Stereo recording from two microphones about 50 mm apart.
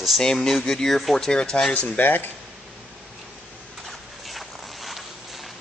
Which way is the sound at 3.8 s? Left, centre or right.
Centre.